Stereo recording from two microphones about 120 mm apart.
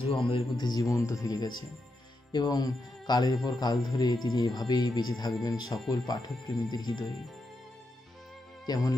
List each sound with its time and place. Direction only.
0.0 s a man's voice: 55° left (ahead or behind)
0.6 s speech: 35° left (ahead or behind)
8.6 s speech: 30° left (ahead or behind)